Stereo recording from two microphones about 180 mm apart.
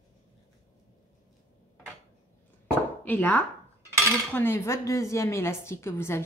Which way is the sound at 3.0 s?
10° left (ahead or behind).